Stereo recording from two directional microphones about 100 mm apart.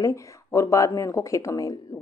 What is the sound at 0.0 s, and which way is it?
A woman's voice, 30° left (ahead or behind).